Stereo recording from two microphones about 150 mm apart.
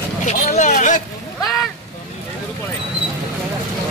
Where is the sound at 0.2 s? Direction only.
55° left (ahead or behind).